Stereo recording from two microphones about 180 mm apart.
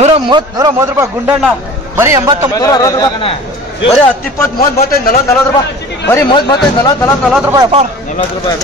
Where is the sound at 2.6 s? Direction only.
20° left (ahead or behind).